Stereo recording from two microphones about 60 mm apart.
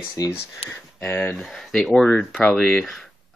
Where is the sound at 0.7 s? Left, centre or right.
Left.